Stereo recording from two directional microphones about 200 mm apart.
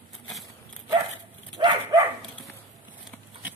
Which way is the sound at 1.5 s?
25° right (ahead or behind).